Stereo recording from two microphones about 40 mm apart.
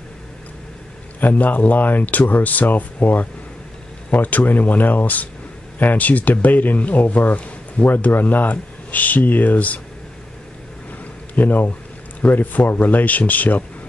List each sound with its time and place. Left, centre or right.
1.2 s speech: left
7.9 s speech: left
11.3 s speech: left